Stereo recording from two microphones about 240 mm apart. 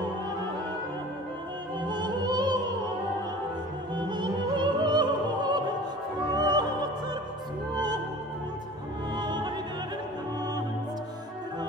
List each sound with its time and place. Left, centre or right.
1.9 s opera: centre
4.1 s opera: centre
9.1 s opera: centre